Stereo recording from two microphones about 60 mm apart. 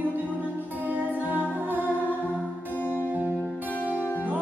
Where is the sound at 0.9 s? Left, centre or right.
Right.